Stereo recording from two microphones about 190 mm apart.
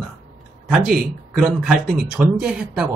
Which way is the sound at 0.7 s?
Centre (ahead or behind).